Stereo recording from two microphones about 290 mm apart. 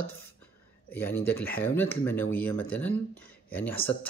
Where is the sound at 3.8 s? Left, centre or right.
Centre.